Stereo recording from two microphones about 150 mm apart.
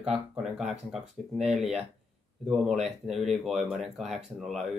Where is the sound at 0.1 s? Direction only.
5° right (ahead or behind).